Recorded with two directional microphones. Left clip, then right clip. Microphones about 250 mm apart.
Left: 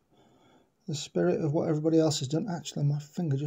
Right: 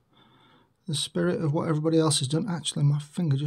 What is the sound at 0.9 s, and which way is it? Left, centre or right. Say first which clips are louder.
Speech: right 1 dB; centre.